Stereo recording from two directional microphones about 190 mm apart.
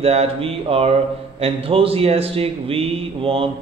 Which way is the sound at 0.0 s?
35° right (ahead or behind).